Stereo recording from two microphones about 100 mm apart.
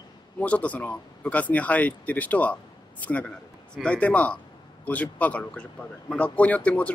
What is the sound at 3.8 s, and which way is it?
Speech, 15° left (ahead or behind).